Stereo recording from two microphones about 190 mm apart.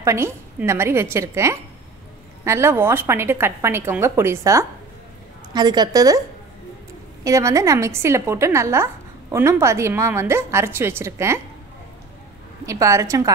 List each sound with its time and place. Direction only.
0.0 s a woman's voice: 15° right (ahead or behind)
7.2 s a woman's voice: 15° right (ahead or behind)
12.6 s a woman's voice: 15° right (ahead or behind)